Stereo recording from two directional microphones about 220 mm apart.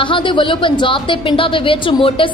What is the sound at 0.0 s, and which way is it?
A woman's voice, 20° left (ahead or behind).